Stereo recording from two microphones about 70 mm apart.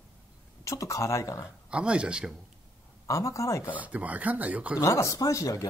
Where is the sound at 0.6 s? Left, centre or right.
Left.